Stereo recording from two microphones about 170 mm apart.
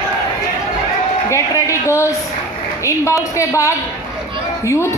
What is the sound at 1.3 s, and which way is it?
A woman's voice, 15° left (ahead or behind).